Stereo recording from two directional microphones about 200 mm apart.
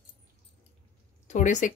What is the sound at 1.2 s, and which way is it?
Speech, 40° left (ahead or behind).